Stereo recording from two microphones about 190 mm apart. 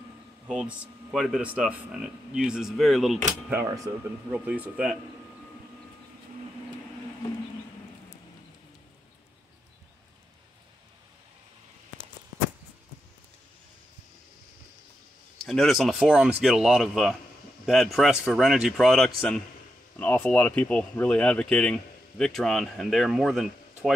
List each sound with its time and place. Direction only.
0.5 s speech: 5° right (ahead or behind)
3.7 s speech: 15° right (ahead or behind)
4.5 s speech: 5° right (ahead or behind)
15.4 s speech: centre (ahead or behind)